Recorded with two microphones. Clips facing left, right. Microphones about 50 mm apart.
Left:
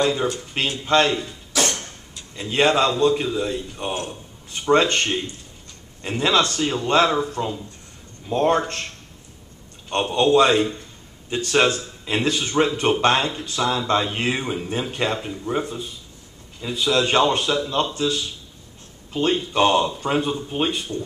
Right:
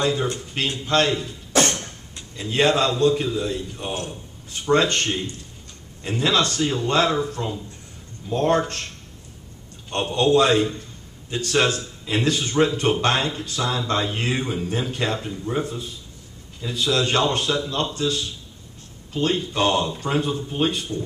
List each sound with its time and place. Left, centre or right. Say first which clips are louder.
0.0 s speech: left 2 dB; centre
1.5 s a sound: right 3 dB; right
2.3 s a man's voice: left 1 dB; centre
9.8 s a man's voice: left 1 dB; centre
19.1 s a man's voice: left 2 dB; centre